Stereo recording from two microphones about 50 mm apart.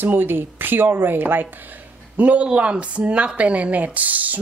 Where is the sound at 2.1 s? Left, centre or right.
Right.